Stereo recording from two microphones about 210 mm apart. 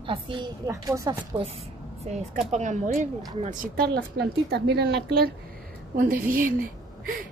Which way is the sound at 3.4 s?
45° right (ahead or behind).